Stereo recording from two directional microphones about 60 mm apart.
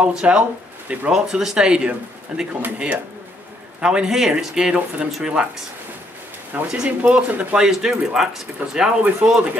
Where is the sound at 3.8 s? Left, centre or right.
Centre.